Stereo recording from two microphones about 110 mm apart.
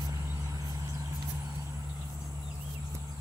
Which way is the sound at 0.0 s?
35° right (ahead or behind).